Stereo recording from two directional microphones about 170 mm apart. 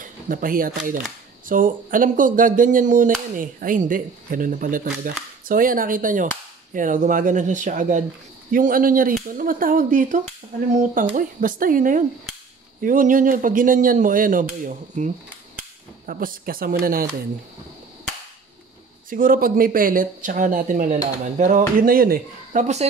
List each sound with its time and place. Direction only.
0.0 s speech: 55° right (ahead or behind)
19.0 s speech: 55° right (ahead or behind)